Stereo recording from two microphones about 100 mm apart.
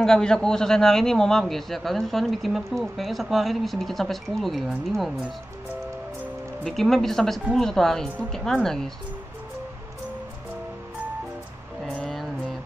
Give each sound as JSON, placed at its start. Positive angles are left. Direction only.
{"t": 0.0, "sound": "a man's voice", "side_deg": 5}
{"t": 6.6, "sound": "a man's voice", "side_deg": 0}
{"t": 11.8, "sound": "a sound", "side_deg": 5}